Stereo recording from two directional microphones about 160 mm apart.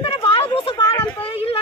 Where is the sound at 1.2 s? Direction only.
35° left (ahead or behind).